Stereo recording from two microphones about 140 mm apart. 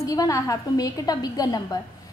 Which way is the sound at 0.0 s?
25° left (ahead or behind).